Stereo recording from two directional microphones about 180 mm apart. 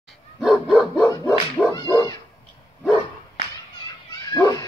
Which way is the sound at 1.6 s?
10° left (ahead or behind).